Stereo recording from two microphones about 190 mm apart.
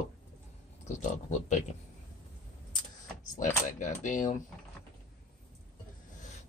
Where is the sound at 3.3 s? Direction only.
40° left (ahead or behind).